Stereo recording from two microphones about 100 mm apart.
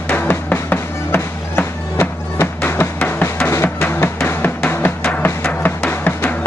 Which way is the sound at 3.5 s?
25° left (ahead or behind).